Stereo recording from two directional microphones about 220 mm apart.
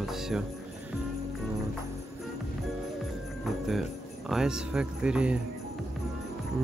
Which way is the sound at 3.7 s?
Centre (ahead or behind).